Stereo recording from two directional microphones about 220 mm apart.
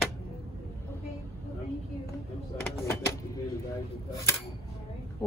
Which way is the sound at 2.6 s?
5° left (ahead or behind).